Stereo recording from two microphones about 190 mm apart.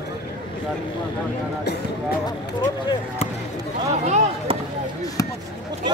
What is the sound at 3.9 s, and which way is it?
Speech, 35° right (ahead or behind).